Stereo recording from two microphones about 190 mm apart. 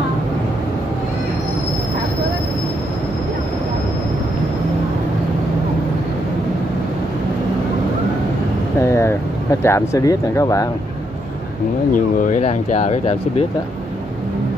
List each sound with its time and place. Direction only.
8.7 s vehicle: 15° left (ahead or behind)
11.9 s speech: 45° left (ahead or behind)